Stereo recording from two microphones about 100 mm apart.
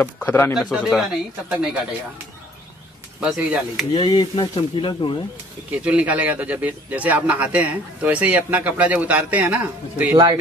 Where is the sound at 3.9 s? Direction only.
50° left (ahead or behind).